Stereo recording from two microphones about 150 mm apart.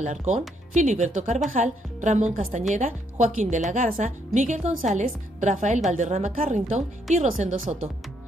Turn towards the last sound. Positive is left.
turn(degrees=-55)  # may be behind; listen again after turning